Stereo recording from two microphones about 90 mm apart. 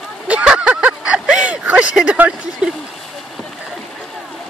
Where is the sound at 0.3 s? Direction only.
10° right (ahead or behind).